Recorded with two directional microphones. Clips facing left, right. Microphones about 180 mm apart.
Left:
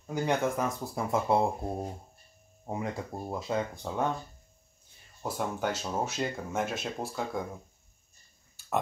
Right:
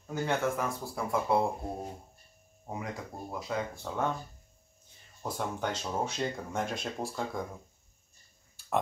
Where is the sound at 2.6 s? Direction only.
25° left (ahead or behind).